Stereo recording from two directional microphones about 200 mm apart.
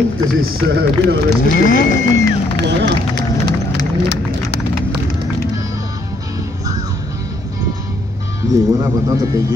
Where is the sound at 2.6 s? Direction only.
55° right (ahead or behind).